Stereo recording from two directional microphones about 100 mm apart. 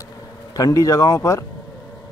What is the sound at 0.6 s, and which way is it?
Speech, 35° left (ahead or behind).